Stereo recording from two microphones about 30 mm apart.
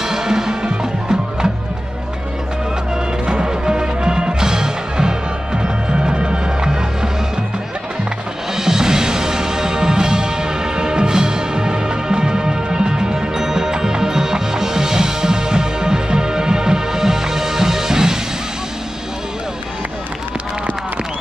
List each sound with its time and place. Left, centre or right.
0.0 s music: centre
3.3 s music: right
8.5 s music: centre